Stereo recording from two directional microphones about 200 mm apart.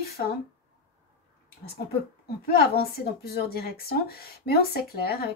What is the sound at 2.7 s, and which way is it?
Speech, 50° left (ahead or behind).